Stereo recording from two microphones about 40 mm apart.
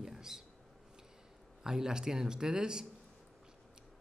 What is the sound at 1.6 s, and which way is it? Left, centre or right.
Speech, centre.